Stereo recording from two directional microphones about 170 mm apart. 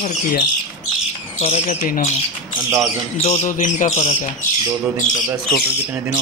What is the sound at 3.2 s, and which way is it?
Speech, 40° left (ahead or behind).